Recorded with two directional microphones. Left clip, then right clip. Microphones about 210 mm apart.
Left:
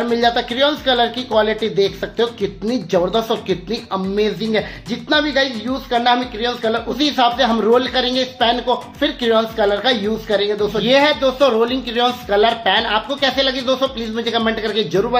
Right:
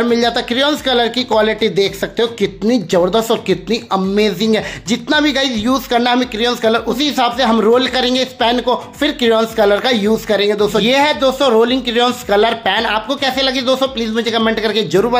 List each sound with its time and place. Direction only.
0.0 s speech: 25° right (ahead or behind)